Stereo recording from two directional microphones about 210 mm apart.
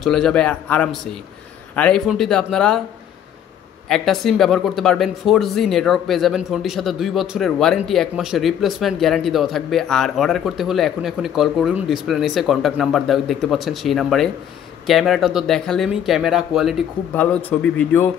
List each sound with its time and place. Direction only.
0.0 s speech: centre (ahead or behind)
3.9 s speech: centre (ahead or behind)